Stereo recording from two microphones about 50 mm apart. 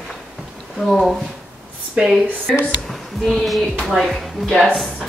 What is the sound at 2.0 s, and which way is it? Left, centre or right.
Speech, centre.